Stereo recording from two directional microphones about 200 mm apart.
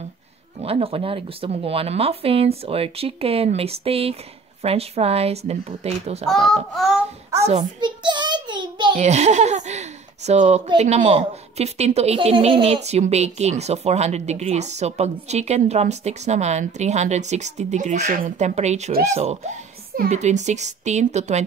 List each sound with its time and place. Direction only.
0.6 s a woman's voice: 30° right (ahead or behind)
6.2 s a child's voice: centre (ahead or behind)
7.4 s a sound: 25° right (ahead or behind)
8.9 s a child's voice: 35° right (ahead or behind)